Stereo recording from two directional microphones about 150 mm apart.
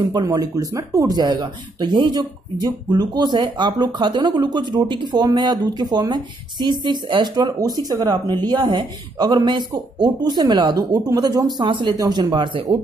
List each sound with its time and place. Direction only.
0.0 s speech: 25° right (ahead or behind)